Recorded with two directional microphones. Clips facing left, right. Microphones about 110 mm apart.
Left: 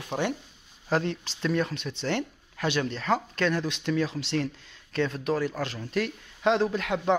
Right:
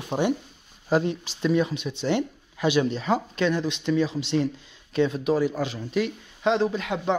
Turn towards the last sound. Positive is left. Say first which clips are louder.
# even
turn(degrees=0)  # may be behind; listen again after turning